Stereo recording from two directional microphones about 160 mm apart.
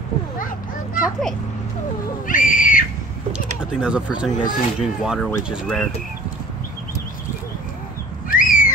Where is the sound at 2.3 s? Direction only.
55° left (ahead or behind).